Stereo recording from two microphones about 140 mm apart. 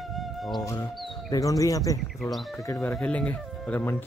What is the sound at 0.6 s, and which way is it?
Speech, 25° left (ahead or behind).